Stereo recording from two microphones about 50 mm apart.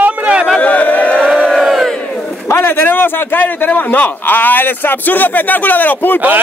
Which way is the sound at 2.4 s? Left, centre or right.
Left.